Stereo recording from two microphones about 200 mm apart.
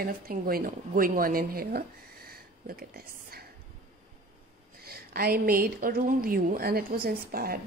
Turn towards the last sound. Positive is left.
turn(degrees=-50)  # may be behind; listen again after turning